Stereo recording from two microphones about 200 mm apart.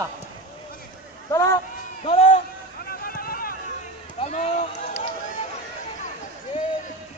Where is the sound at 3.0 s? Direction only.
45° left (ahead or behind).